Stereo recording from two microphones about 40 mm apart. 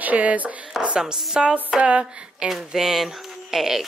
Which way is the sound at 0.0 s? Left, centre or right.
Right.